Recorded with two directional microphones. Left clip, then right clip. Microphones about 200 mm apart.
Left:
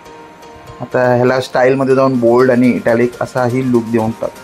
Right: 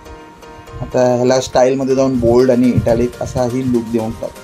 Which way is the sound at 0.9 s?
5° left (ahead or behind).